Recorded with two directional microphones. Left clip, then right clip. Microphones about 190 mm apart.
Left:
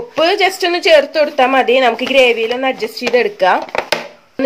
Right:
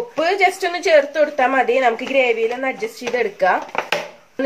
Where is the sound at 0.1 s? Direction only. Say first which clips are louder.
Left 4 dB; 50° left (ahead or behind).